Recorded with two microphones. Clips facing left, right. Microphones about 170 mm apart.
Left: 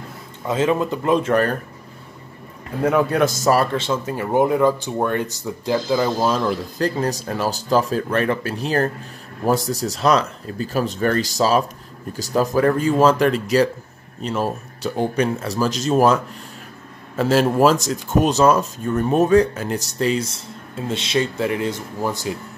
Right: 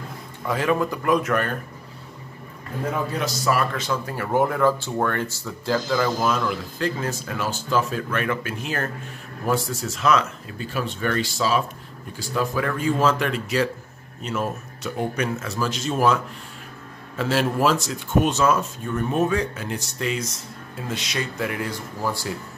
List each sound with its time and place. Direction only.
0.5 s speech: 20° left (ahead or behind)
2.8 s a man's voice: 70° left (ahead or behind); by 3.6 s 45° left (ahead or behind)
3.7 s speech: 25° left (ahead or behind)
17.2 s speech: 40° left (ahead or behind); by 22.3 s 20° left (ahead or behind)